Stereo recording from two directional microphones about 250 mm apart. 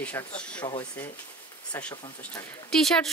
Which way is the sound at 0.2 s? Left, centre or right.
Centre.